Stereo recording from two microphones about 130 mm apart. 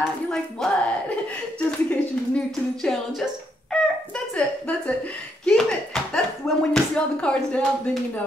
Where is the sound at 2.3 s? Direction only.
5° left (ahead or behind).